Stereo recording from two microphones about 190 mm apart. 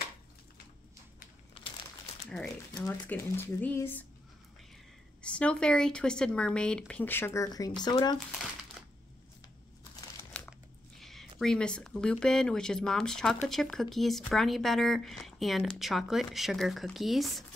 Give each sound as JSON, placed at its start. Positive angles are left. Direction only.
{"t": 1.6, "sound": "crumpling", "side_deg": 25}
{"t": 2.2, "sound": "a sound", "side_deg": 0}
{"t": 2.7, "sound": "speech", "side_deg": 15}
{"t": 5.2, "sound": "speech", "side_deg": 5}
{"t": 10.3, "sound": "crumpling", "side_deg": 5}
{"t": 11.0, "sound": "speech", "side_deg": 0}